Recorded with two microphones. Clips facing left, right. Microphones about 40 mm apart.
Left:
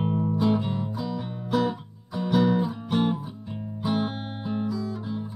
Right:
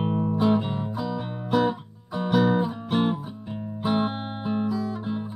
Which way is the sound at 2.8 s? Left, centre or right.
Right.